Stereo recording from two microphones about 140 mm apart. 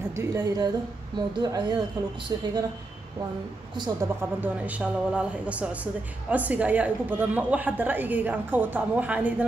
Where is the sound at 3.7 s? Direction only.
30° right (ahead or behind).